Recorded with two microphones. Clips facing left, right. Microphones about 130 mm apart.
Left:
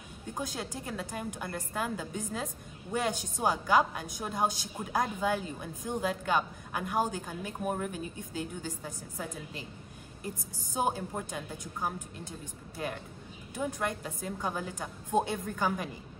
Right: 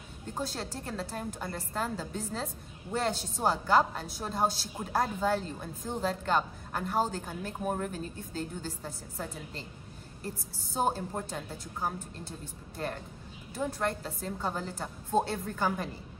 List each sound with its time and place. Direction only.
0.3 s a woman's voice: 10° left (ahead or behind)